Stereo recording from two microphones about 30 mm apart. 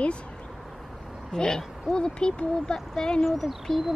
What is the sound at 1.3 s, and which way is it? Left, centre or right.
Speech, left.